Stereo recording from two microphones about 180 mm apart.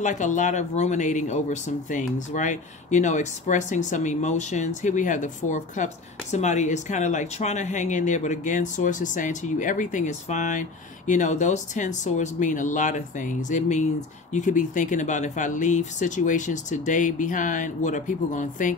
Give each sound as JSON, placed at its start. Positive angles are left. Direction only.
{"t": 0.0, "sound": "speech", "side_deg": 45}